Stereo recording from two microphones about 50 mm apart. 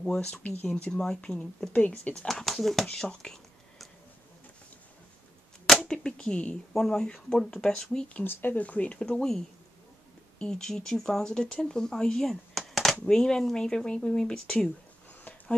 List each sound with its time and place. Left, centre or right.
0.4 s speech: left
0.9 s speech: centre
1.7 s speech: left
2.2 s speech: centre
5.8 s a sound: centre
6.7 s speech: centre
8.2 s speech: left
8.5 s speech: left
10.4 s speech: centre
12.3 s speech: centre